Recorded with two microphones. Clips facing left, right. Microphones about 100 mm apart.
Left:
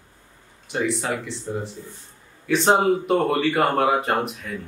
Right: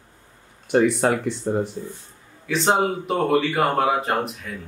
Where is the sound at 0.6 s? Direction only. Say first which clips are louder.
Right 7 dB; 55° right (ahead or behind).